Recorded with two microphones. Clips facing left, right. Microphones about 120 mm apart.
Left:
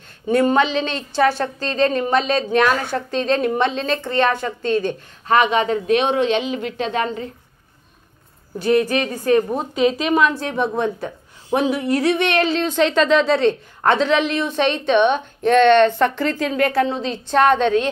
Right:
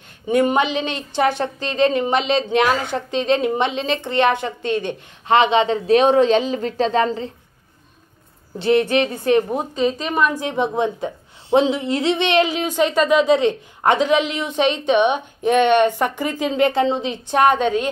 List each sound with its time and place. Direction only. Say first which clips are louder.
0.3 s a woman's voice: left 1 dB; 15° right (ahead or behind); by 7.2 s 35° right (ahead or behind)
8.5 s a woman's voice: right 1 dB; 25° right (ahead or behind)